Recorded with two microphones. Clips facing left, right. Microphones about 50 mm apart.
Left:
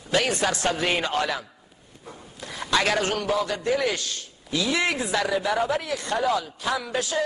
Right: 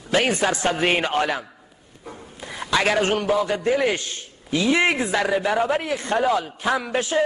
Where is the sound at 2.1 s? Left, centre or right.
Centre.